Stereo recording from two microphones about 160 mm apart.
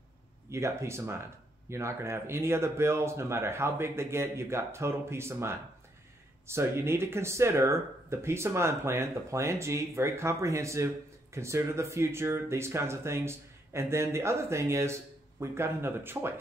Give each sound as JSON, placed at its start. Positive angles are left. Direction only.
{"t": 0.5, "sound": "speech", "side_deg": -15}